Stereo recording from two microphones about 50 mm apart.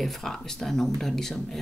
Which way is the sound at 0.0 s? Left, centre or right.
Centre.